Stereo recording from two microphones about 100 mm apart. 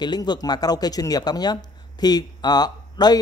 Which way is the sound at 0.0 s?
45° left (ahead or behind).